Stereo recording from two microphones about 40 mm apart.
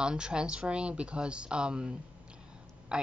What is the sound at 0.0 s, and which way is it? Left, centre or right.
A woman's voice, right.